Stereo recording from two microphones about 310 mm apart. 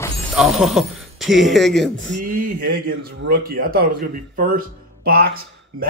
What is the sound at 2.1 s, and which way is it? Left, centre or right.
Speech, right.